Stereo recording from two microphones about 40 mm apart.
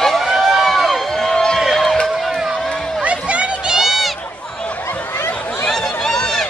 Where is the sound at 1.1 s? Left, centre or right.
Centre.